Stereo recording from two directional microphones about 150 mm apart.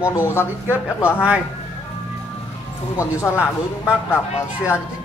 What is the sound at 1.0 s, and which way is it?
Speech, 10° right (ahead or behind).